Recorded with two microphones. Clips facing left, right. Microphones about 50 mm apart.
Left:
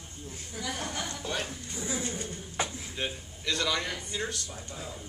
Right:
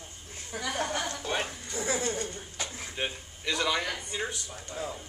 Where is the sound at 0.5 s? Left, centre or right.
Right.